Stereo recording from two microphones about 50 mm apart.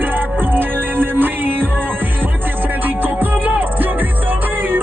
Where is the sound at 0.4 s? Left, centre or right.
Right.